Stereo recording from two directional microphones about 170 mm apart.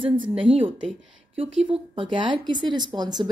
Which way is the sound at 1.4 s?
30° right (ahead or behind).